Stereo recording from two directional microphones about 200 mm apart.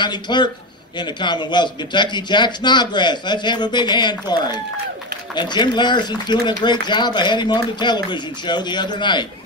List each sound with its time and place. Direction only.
0.0 s speech: 20° left (ahead or behind)